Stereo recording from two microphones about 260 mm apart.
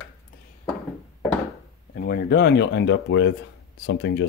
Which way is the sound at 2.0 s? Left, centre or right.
Left.